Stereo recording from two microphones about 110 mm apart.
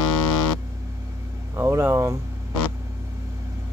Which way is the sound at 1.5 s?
25° right (ahead or behind).